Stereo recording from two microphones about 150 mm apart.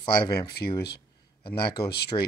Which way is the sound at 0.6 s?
90° left.